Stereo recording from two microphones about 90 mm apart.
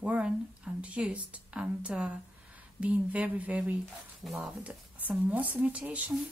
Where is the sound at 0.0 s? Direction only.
15° right (ahead or behind).